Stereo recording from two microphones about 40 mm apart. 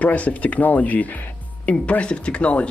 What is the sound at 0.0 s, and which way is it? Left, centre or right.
Speech, left.